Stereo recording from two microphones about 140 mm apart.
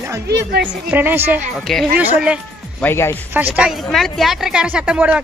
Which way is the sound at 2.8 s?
15° left (ahead or behind).